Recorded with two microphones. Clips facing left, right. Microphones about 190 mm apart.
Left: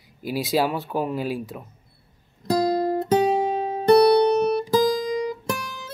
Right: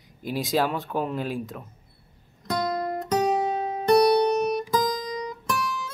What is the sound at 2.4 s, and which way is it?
Guitar, 30° left (ahead or behind).